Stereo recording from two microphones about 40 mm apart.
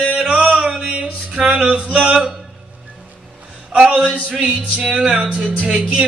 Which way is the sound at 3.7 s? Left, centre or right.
Centre.